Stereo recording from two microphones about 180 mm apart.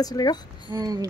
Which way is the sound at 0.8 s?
20° right (ahead or behind).